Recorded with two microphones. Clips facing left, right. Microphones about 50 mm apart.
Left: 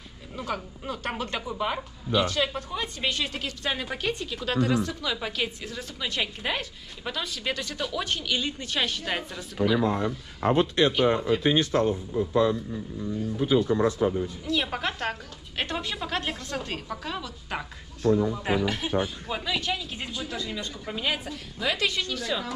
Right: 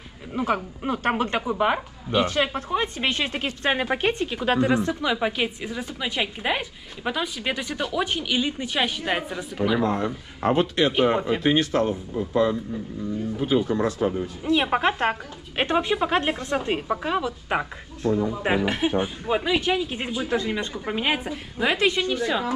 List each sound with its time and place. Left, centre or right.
0.3 s speech: right
9.8 s speech: right
10.9 s speech: right
13.7 s speech: right; by 18.4 s centre
18.4 s speech: right